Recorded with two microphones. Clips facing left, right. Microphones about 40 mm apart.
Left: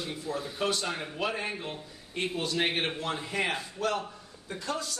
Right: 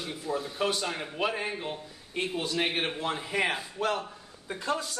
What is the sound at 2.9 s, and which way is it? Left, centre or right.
A man's voice, centre.